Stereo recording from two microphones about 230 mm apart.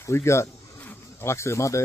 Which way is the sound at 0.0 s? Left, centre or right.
Centre.